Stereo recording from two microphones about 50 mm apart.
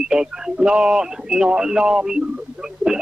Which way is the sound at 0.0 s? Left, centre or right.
Centre.